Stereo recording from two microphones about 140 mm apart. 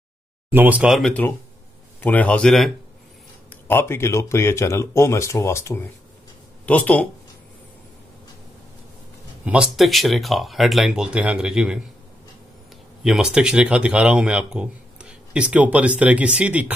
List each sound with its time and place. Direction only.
0.5 s speech: 10° right (ahead or behind)
0.9 s speech: 5° left (ahead or behind)
3.6 s speech: 15° left (ahead or behind)
9.4 s speech: 10° right (ahead or behind)
13.0 s speech: 5° right (ahead or behind)